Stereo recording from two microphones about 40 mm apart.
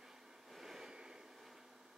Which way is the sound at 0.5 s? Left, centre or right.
Centre.